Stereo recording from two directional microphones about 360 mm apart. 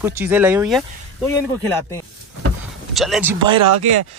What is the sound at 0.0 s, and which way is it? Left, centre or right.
Speech, centre.